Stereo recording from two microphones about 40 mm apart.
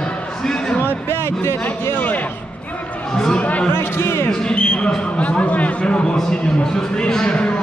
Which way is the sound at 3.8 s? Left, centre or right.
Left.